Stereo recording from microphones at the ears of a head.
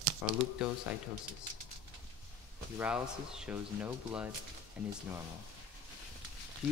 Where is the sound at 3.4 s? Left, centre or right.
Left.